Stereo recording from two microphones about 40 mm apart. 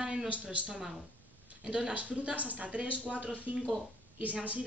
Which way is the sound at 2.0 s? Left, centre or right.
Right.